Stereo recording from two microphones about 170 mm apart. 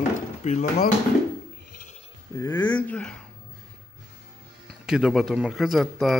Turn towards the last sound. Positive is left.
turn(degrees=0)  # may be behind; listen again after turning